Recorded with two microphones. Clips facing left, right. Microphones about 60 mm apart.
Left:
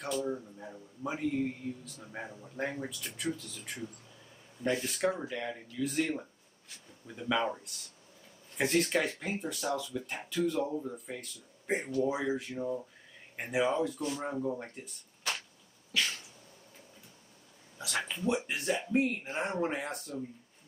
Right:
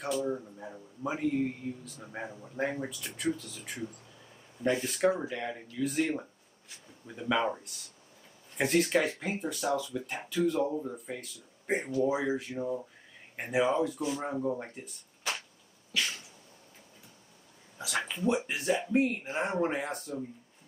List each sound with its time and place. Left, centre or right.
0.0 s speech: centre
17.7 s speech: centre